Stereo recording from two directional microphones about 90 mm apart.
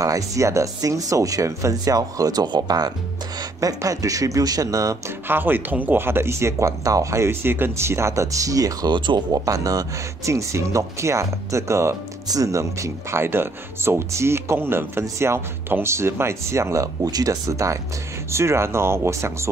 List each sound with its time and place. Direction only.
0.0 s speech: 40° right (ahead or behind)
5.3 s speech: 20° right (ahead or behind); by 8.9 s 40° right (ahead or behind)
8.9 s speech: 60° right (ahead or behind)
9.3 s speech: 40° right (ahead or behind)